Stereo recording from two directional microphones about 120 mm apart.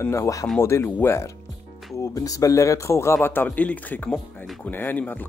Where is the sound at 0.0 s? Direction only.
25° left (ahead or behind).